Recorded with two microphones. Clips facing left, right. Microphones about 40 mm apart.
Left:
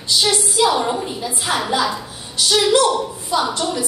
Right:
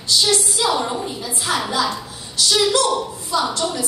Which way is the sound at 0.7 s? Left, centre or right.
Centre.